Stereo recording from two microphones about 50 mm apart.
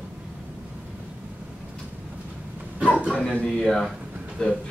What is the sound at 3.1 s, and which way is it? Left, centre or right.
A man's voice, centre.